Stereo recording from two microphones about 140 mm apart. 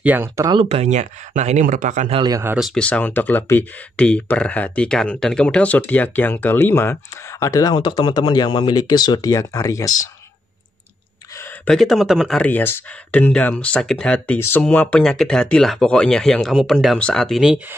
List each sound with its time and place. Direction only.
0.0 s speech: 15° right (ahead or behind)
0.7 s speech: 50° right (ahead or behind)
2.2 s speech: 25° right (ahead or behind)
2.5 s speech: centre (ahead or behind)
2.8 s speech: 10° left (ahead or behind)
11.6 s speech: 5° left (ahead or behind)